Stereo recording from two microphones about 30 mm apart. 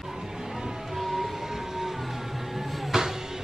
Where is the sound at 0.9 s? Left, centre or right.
Centre.